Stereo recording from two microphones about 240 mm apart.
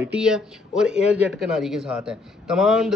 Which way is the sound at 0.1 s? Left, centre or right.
Centre.